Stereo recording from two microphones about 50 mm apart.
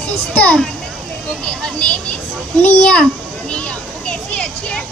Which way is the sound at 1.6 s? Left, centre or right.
Left.